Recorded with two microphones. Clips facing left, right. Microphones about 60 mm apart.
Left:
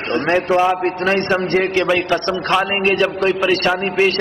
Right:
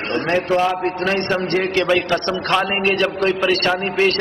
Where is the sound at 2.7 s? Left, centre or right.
Left.